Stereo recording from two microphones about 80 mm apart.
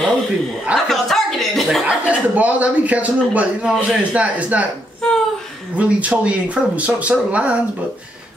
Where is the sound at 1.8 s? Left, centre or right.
Centre.